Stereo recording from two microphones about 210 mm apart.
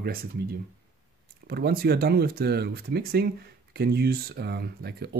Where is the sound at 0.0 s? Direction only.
45° right (ahead or behind).